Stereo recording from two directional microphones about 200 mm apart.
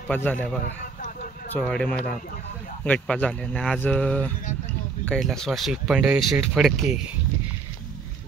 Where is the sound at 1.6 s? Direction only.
5° left (ahead or behind).